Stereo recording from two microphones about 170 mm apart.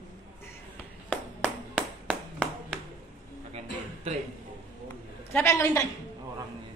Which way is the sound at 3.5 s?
40° right (ahead or behind).